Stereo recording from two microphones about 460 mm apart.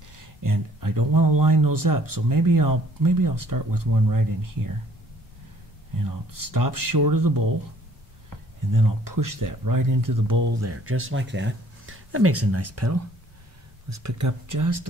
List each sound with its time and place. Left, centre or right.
0.4 s speech: right
5.9 s speech: right
8.7 s speech: right